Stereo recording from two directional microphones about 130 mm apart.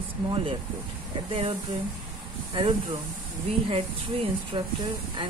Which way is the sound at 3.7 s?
50° right (ahead or behind).